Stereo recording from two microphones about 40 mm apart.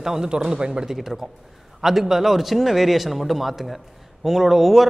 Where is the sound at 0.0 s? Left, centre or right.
Centre.